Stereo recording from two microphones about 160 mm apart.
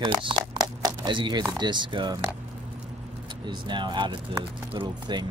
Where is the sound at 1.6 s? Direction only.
30° right (ahead or behind).